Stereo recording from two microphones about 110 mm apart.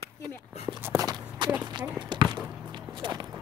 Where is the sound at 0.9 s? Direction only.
40° right (ahead or behind).